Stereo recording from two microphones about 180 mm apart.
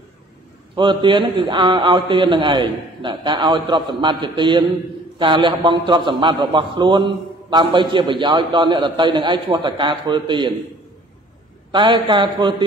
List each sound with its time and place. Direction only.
0.7 s a man's voice: 25° right (ahead or behind)
11.7 s a man's voice: 25° right (ahead or behind)